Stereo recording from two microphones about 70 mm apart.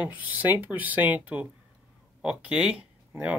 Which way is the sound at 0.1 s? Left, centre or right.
Right.